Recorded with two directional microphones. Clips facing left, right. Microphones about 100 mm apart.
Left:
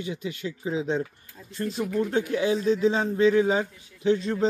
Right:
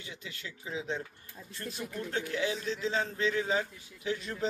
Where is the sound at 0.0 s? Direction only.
20° left (ahead or behind).